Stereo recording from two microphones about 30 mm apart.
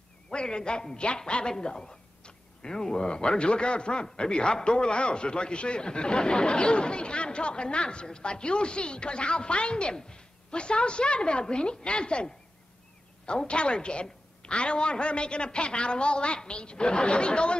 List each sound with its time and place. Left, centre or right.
0.3 s a man's voice: left
1.6 s a sound: left
2.7 s a man's voice: left
13.5 s a man's voice: left